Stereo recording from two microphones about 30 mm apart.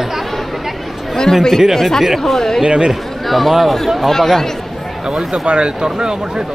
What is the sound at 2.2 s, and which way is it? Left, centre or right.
Speech, centre.